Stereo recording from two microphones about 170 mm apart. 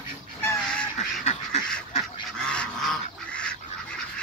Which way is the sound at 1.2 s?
40° left (ahead or behind).